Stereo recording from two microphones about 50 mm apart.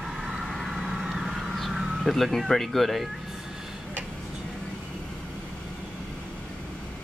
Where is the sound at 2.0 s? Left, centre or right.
Centre.